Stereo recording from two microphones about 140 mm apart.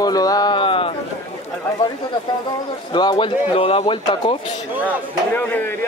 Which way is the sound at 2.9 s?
30° left (ahead or behind).